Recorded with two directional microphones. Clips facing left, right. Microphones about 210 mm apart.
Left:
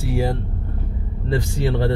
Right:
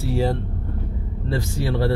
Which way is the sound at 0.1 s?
15° left (ahead or behind).